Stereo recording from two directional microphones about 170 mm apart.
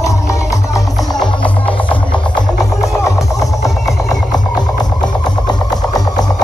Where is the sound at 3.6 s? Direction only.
Centre (ahead or behind).